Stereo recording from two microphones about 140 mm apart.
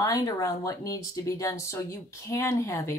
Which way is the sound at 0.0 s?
25° left (ahead or behind).